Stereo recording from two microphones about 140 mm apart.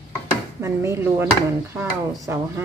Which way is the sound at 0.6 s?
20° right (ahead or behind).